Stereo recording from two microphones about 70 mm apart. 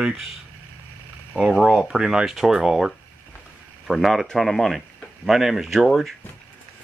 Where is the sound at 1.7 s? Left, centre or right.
Centre.